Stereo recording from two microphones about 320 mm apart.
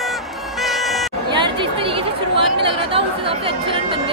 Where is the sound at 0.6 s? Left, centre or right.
Centre.